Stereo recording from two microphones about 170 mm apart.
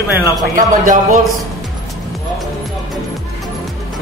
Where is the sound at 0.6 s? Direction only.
50° right (ahead or behind).